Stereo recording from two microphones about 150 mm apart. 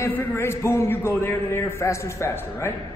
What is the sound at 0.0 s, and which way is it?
A man's voice, 15° left (ahead or behind).